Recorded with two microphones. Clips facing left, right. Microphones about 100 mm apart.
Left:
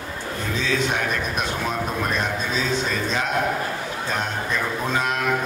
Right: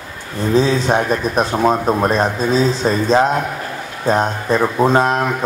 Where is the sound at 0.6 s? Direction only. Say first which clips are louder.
Right 9 dB; 35° right (ahead or behind).